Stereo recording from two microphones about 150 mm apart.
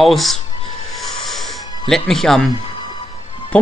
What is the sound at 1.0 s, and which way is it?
Music, centre (ahead or behind).